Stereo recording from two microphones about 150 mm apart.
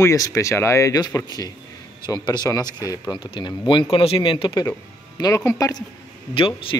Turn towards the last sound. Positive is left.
turn(degrees=35)  # may be behind; listen again after turning